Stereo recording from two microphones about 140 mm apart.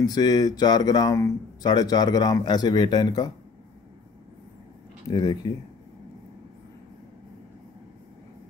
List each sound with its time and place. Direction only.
0.0 s speech: 30° left (ahead or behind)
5.1 s speech: 30° left (ahead or behind)